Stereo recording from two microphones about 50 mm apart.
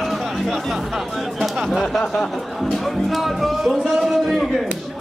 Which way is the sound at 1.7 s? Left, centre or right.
Centre.